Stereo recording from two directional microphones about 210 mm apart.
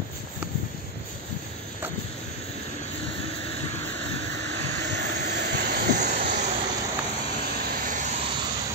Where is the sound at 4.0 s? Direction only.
55° right (ahead or behind).